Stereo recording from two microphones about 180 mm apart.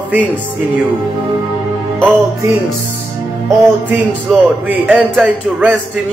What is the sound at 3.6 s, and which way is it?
Speech, 10° right (ahead or behind).